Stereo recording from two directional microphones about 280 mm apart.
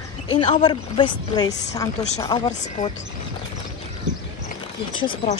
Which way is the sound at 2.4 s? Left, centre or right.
Left.